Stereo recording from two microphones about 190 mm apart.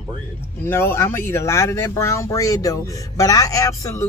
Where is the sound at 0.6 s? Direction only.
10° left (ahead or behind).